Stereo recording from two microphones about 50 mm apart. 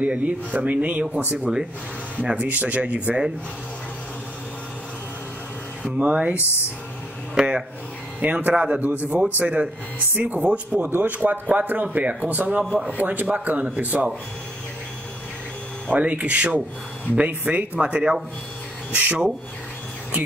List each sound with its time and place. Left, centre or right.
0.0 s a man's voice: right
1.3 s speech: centre
2.4 s a man's voice: right
5.9 s speech: right
6.3 s speech: left
7.4 s a sound: centre
8.2 s speech: right
10.7 s a man's voice: right
15.9 s a man's voice: right